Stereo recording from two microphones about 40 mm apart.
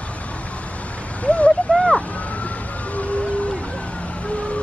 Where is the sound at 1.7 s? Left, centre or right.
Left.